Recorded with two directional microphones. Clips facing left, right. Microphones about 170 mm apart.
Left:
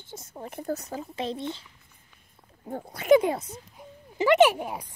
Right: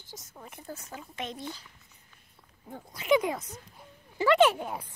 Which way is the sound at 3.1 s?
30° left (ahead or behind).